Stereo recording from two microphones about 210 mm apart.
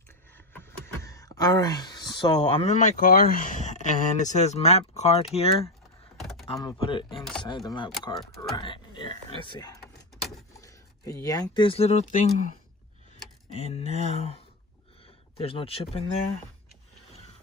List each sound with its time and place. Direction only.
0.5 s speech: 10° left (ahead or behind); by 5.7 s 30° left (ahead or behind)
6.1 s power windows: centre (ahead or behind)
6.5 s speech: 20° left (ahead or behind)
13.6 s a sound: 30° left (ahead or behind)
15.3 s speech: 25° left (ahead or behind)